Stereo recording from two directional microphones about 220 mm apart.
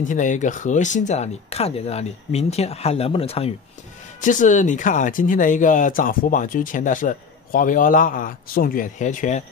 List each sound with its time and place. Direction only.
0.1 s speech: 35° left (ahead or behind)